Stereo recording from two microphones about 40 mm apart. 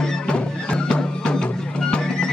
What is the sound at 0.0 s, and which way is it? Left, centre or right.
Music, left.